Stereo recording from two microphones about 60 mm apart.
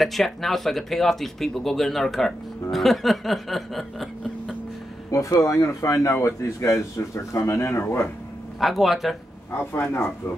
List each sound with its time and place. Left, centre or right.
0.0 s speech: centre
5.1 s speech: left
7.8 s speech: left
8.5 s speech: centre
9.5 s speech: left